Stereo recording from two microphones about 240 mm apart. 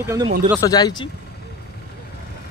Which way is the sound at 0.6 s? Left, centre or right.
Centre.